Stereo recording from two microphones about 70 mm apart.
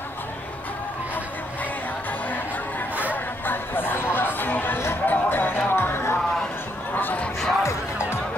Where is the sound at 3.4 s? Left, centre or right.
Left.